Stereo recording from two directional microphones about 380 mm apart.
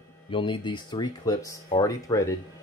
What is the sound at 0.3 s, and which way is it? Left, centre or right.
Speech, centre.